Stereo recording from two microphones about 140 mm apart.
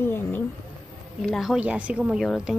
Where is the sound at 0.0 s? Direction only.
15° left (ahead or behind).